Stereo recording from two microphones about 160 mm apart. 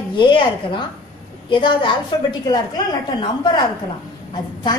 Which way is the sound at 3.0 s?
25° left (ahead or behind).